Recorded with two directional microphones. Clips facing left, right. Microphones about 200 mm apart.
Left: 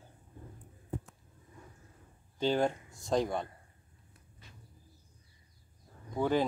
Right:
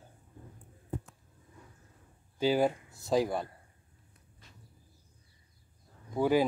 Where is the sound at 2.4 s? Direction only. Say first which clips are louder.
Right 2 dB; 5° right (ahead or behind).